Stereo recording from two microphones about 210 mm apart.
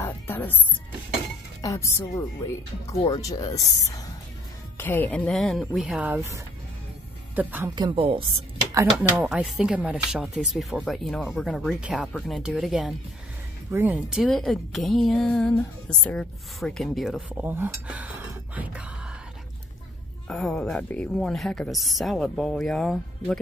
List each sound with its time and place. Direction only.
0.0 s music: 10° left (ahead or behind)
1.6 s a woman's voice: 15° left (ahead or behind); by 7.7 s 10° right (ahead or behind)
7.7 s a woman's voice: 25° right (ahead or behind)
8.7 s a woman's voice: 5° right (ahead or behind)
20.2 s a woman's voice: 5° left (ahead or behind)